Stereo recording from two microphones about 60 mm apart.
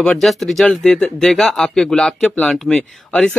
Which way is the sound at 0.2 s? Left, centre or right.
Centre.